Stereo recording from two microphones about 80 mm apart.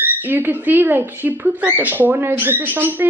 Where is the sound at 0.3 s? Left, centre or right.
Right.